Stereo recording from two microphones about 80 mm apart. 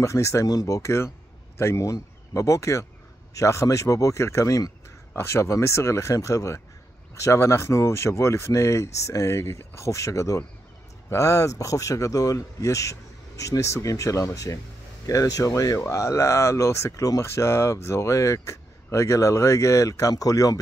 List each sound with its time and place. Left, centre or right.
0.0 s speech: left
5.1 s speech: left